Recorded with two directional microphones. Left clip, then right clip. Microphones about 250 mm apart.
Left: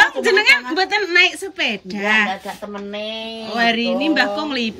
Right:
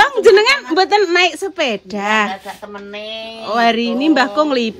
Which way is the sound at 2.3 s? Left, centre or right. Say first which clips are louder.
Even; left.